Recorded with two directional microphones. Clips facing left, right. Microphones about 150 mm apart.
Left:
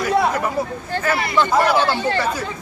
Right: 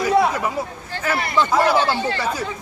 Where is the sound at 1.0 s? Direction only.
10° right (ahead or behind).